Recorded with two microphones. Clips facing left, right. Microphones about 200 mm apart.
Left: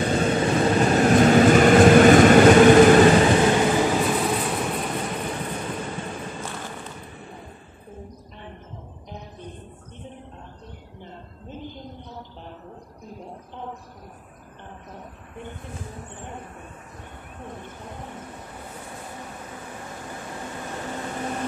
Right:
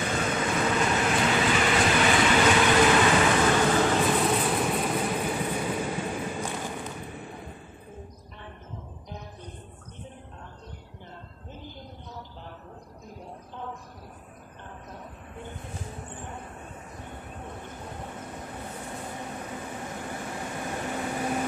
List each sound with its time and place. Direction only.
0.0 s vehicle: 35° left (ahead or behind)
3.5 s train: 10° left (ahead or behind)
6.4 s a sound: 15° right (ahead or behind)